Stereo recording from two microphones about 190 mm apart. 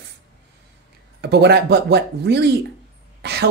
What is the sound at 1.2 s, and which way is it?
Speech, 60° right (ahead or behind).